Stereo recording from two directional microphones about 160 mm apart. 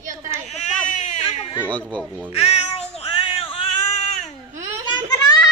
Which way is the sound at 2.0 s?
10° right (ahead or behind).